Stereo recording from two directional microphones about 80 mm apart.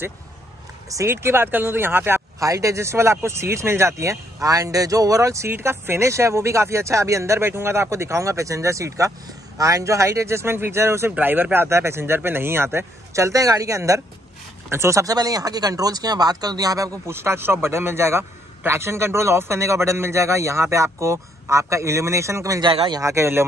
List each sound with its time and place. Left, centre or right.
1.0 s speech: right
2.4 s a man's voice: right
15.1 s speech: right
17.1 s a man's voice: right
22.6 s speech: right
22.9 s a man's voice: right